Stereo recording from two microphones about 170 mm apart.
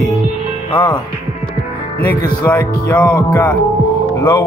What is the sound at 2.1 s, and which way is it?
A man's voice, 10° left (ahead or behind).